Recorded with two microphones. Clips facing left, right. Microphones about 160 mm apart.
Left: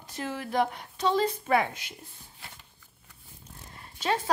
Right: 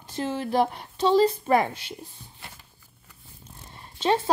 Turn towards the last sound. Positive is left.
turn(degrees=-30)  # may be behind; listen again after turning